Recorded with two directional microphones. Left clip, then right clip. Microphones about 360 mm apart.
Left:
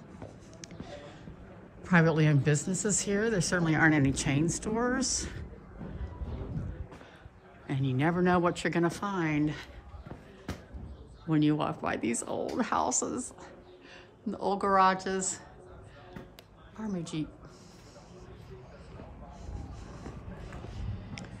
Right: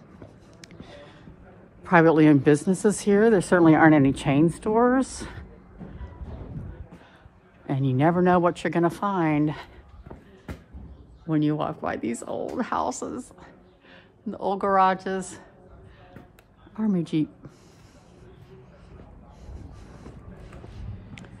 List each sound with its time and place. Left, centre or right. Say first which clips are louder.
0.6 s a sound: even; centre
1.8 s a woman's voice: right 9 dB; centre
7.6 s speech: right 8 dB; centre
11.2 s speech: right 3 dB; centre
16.7 s a woman's voice: right 11 dB; centre